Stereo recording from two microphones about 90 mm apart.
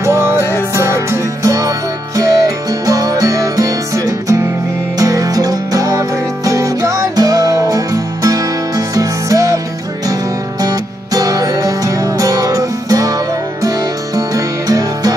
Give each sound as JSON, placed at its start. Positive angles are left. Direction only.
{"t": 0.0, "sound": "music", "side_deg": -30}
{"t": 10.6, "sound": "music", "side_deg": -45}